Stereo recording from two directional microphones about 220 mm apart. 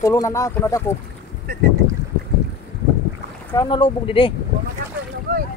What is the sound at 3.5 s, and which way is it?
Speech, 20° left (ahead or behind).